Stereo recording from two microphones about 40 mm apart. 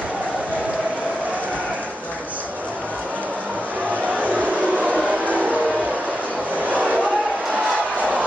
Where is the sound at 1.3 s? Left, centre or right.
Right.